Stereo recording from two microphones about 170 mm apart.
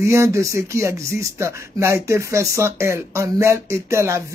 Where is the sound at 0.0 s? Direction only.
15° right (ahead or behind).